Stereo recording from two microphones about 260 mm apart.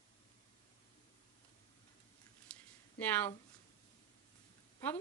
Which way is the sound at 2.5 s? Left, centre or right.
Centre.